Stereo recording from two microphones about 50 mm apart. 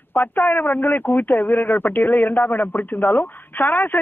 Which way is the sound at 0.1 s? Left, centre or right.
Left.